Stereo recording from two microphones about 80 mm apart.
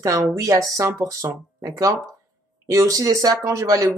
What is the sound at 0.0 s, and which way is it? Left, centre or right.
Speech, right.